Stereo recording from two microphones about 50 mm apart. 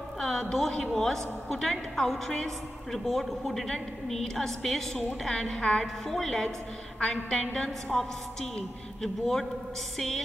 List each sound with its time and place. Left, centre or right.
0.2 s a man's voice: centre